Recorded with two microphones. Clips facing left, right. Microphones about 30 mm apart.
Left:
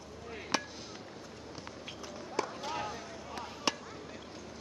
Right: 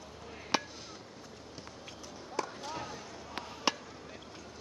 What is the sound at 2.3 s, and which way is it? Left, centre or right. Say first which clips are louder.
Basketball bounce: left 2 dB; centre.